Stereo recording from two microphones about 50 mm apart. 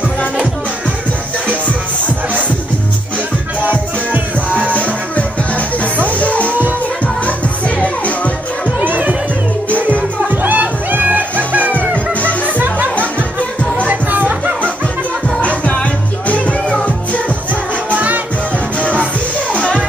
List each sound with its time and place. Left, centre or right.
3.6 s music: right
6.0 s music: left
8.6 s music: right
10.2 s music: right
12.1 s music: left
13.8 s music: right
15.4 s music: left
17.9 s music: right